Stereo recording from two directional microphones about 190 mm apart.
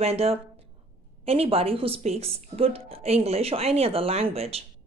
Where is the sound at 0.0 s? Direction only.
30° right (ahead or behind).